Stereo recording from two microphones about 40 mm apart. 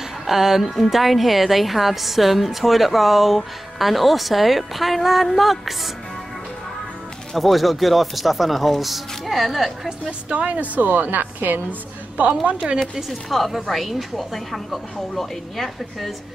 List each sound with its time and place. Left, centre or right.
0.3 s a woman's voice: centre
7.3 s a woman's voice: centre
10.3 s a woman's voice: right
12.4 s a woman's voice: right
13.1 s a woman's voice: centre